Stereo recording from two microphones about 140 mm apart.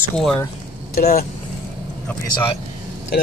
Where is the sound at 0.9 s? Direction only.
90° left.